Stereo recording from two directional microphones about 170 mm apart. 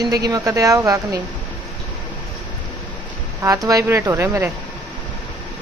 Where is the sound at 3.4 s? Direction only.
20° right (ahead or behind).